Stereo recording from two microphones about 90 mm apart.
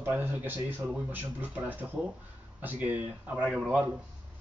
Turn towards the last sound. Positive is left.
turn(degrees=-15)  # may be behind; listen again after turning